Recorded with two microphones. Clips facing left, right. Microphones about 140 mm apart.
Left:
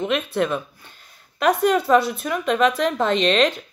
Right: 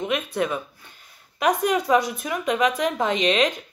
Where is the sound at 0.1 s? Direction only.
10° right (ahead or behind).